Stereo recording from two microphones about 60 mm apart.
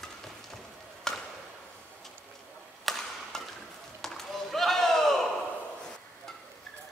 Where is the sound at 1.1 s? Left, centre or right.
Centre.